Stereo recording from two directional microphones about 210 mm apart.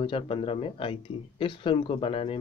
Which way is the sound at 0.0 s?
25° left (ahead or behind).